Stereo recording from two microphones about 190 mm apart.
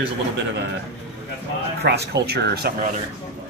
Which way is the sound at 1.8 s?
60° right (ahead or behind).